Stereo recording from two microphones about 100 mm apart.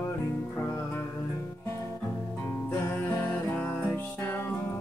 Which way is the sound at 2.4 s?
20° left (ahead or behind).